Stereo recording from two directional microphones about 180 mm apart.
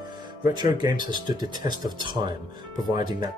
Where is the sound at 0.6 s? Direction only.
25° right (ahead or behind).